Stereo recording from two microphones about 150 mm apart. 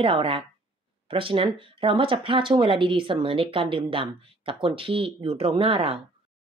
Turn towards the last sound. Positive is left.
turn(degrees=-40)  # may be behind; listen again after turning